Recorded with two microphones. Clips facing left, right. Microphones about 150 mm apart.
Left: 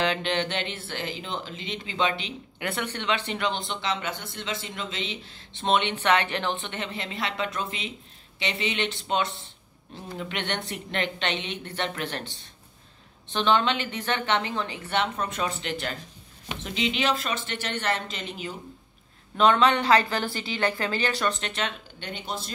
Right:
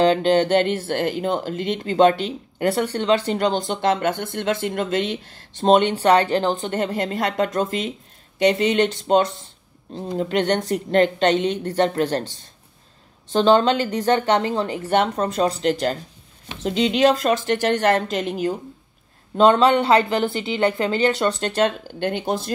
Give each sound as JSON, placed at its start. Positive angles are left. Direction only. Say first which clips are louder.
{"t": 0.0, "sound": "speech", "louder": "right 10 dB", "side_deg": -35}
{"t": 19.3, "sound": "a woman's voice", "louder": "right 6 dB", "side_deg": -30}
{"t": 21.6, "sound": "speech", "louder": "right 12 dB", "side_deg": -50}